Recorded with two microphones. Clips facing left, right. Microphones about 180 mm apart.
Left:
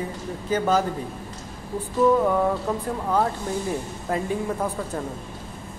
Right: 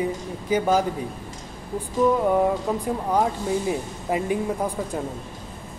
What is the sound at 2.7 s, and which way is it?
Speech, 10° right (ahead or behind).